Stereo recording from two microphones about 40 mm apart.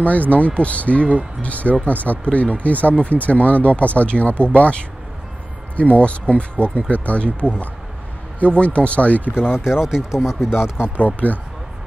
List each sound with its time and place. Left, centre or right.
0.5 s speech: left
5.8 s speech: left
9.4 s speech: centre
11.0 s speech: left